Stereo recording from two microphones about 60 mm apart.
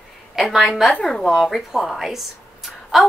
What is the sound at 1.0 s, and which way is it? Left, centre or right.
Speech, centre.